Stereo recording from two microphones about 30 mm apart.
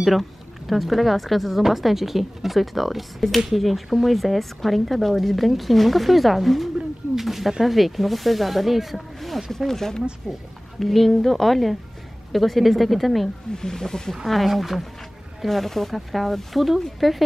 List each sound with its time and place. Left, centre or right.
0.0 s speech: centre
9.7 s speech: centre
10.3 s speech: right
10.8 s speech: centre
13.6 s speech: centre
14.2 s speech: centre
15.4 s speech: centre